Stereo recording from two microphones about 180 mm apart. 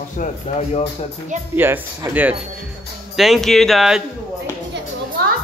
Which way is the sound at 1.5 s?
10° right (ahead or behind).